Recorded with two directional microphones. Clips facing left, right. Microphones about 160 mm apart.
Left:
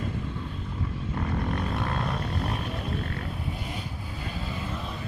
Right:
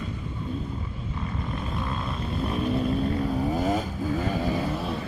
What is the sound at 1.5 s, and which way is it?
Vehicle, 65° left (ahead or behind).